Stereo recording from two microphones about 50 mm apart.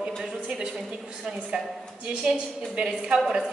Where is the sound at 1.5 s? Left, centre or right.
Centre.